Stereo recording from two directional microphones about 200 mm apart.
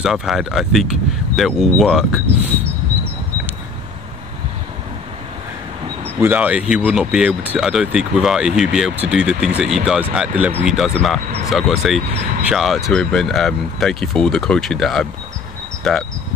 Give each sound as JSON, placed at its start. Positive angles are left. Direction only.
{"t": 0.0, "sound": "speech", "side_deg": 0}
{"t": 6.0, "sound": "speech", "side_deg": -10}
{"t": 12.1, "sound": "vehicle", "side_deg": -35}
{"t": 12.4, "sound": "speech", "side_deg": 0}